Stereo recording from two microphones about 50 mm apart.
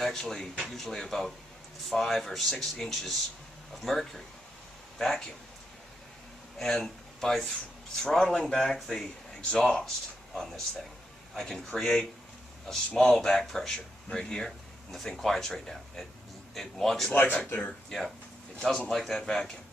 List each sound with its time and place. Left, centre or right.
0.0 s speech: centre
6.6 s speech: centre
17.1 s speech: left
17.8 s speech: centre